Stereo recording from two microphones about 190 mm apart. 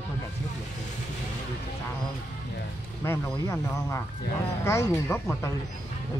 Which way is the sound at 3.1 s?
15° left (ahead or behind).